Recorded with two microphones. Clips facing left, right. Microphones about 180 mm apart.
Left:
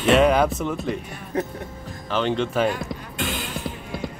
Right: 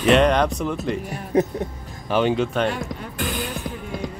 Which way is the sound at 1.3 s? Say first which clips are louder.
Right 7 dB; 15° right (ahead or behind).